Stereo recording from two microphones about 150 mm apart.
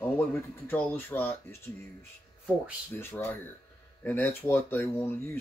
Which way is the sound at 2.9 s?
15° left (ahead or behind).